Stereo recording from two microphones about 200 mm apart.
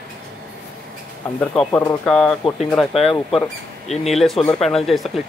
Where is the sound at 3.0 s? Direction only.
25° left (ahead or behind).